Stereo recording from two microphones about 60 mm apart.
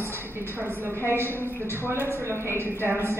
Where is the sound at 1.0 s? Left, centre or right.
Right.